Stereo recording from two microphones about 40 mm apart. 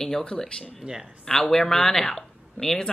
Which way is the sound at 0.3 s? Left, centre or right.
Left.